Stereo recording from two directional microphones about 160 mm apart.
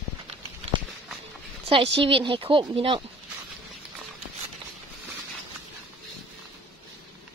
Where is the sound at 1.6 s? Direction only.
35° right (ahead or behind).